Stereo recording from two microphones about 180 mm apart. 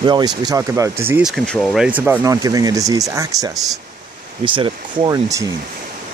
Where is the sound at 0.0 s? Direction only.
25° right (ahead or behind).